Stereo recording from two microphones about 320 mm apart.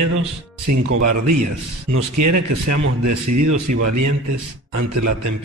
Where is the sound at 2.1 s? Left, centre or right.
Right.